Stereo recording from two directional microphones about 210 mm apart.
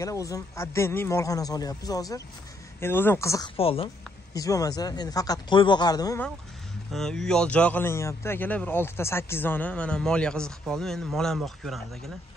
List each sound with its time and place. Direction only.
0.0 s speech: 15° left (ahead or behind)
4.3 s speech: 15° left (ahead or behind)
6.9 s speech: centre (ahead or behind)